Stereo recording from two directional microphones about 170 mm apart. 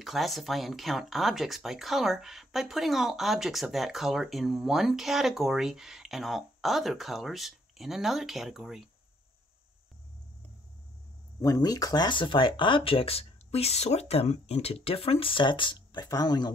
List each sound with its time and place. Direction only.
0.0 s speech: centre (ahead or behind)
11.4 s speech: 20° left (ahead or behind)